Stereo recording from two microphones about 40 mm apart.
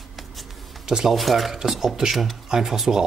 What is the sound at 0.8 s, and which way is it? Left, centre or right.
Speech, centre.